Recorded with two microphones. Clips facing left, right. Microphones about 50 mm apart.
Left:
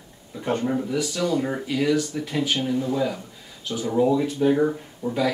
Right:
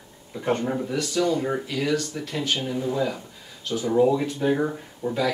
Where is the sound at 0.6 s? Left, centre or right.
Centre.